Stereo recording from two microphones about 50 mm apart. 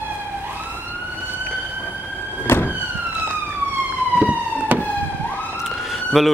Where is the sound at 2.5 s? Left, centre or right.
Left.